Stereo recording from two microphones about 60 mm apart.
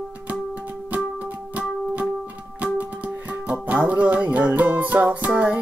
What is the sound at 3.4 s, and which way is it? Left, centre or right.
Music, right.